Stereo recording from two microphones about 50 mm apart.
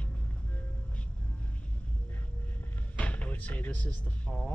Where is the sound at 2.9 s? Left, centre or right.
Left.